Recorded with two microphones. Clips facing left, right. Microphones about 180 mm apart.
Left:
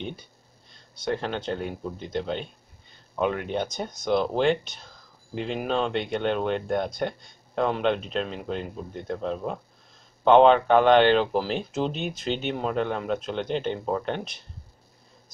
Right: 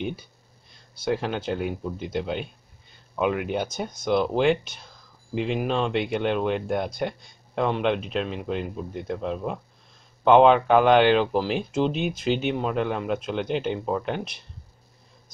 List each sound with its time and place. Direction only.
0.7 s speech: 5° right (ahead or behind)